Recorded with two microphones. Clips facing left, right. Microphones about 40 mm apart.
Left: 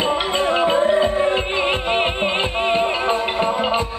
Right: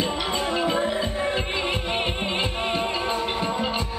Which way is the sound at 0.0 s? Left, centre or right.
Left.